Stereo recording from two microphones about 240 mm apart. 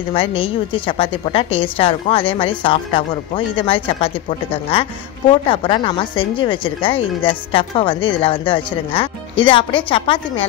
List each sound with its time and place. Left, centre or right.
0.1 s a woman's voice: left